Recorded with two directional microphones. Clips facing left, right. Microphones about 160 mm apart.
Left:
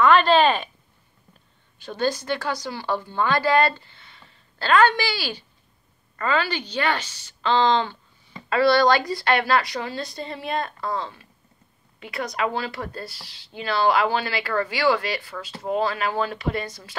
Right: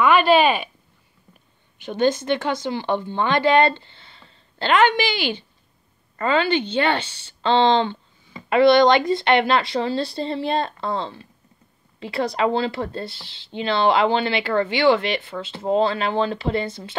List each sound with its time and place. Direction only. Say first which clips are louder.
0.0 s speech: right 1 dB; 10° right (ahead or behind)
1.8 s speech: right 5 dB; 20° right (ahead or behind)